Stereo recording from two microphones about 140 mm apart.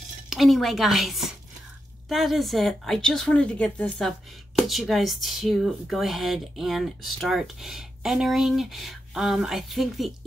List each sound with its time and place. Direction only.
0.3 s speech: centre (ahead or behind)